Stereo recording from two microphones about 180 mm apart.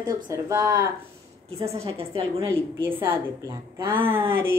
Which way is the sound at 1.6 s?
35° right (ahead or behind).